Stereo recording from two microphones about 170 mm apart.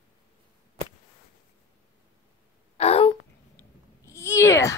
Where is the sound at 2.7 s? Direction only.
35° left (ahead or behind).